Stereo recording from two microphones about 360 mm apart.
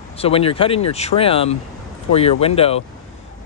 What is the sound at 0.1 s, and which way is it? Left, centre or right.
Speech, centre.